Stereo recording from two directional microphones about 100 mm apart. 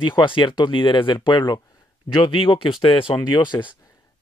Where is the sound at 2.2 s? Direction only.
55° left (ahead or behind).